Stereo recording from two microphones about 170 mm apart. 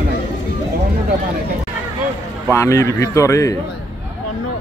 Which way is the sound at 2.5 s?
15° left (ahead or behind).